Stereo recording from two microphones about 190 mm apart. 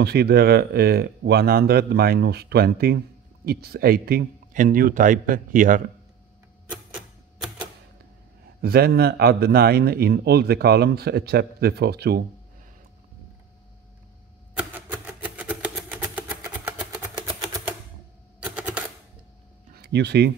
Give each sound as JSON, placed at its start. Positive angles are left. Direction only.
{"t": 0.0, "sound": "a man's voice", "side_deg": -55}
{"t": 8.5, "sound": "speech", "side_deg": -55}
{"t": 14.7, "sound": "a sound", "side_deg": -10}
{"t": 18.4, "sound": "typewriter", "side_deg": -10}
{"t": 19.7, "sound": "speech", "side_deg": -55}